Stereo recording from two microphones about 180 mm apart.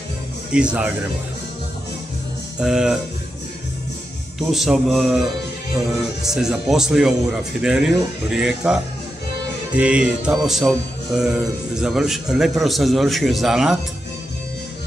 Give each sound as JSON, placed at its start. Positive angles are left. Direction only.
{"t": 0.5, "sound": "music", "side_deg": -5}
{"t": 2.6, "sound": "music", "side_deg": -5}
{"t": 4.4, "sound": "music", "side_deg": 0}
{"t": 6.3, "sound": "music", "side_deg": 0}